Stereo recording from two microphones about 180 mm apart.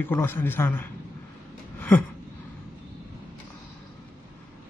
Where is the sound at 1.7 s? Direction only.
10° left (ahead or behind).